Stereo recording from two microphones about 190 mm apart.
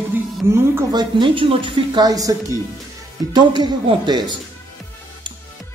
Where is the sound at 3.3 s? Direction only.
25° right (ahead or behind).